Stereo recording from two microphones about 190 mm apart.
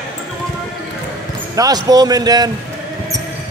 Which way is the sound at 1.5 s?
20° right (ahead or behind).